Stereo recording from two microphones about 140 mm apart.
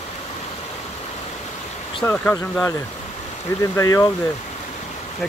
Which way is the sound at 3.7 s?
25° left (ahead or behind).